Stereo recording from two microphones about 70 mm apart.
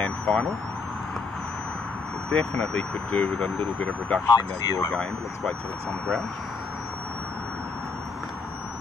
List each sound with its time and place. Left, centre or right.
0.0 s vehicle: centre
2.3 s speech: centre
4.3 s speech: left